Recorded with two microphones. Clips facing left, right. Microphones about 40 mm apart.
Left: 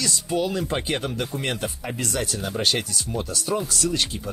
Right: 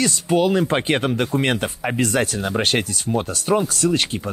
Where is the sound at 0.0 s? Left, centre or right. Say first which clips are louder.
Right 7 dB; right.